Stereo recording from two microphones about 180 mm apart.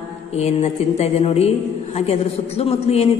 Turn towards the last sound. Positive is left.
turn(degrees=35)  # may be behind; listen again after turning